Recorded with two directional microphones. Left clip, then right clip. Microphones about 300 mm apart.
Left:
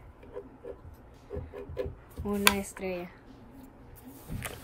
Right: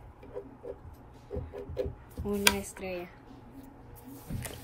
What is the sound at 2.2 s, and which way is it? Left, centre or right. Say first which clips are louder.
Speech: left 1 dB; centre.